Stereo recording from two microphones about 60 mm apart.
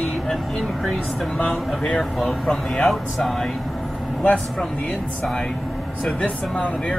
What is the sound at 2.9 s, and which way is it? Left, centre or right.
Speech, centre.